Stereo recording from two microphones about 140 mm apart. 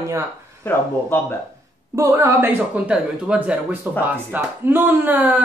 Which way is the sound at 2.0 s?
20° right (ahead or behind).